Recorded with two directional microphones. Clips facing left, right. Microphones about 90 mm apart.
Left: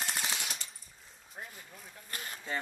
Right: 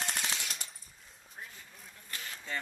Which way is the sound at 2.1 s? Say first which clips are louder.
Left 1 dB; 45° left (ahead or behind).